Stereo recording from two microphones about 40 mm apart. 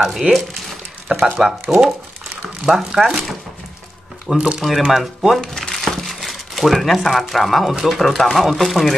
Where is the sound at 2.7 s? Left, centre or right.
Centre.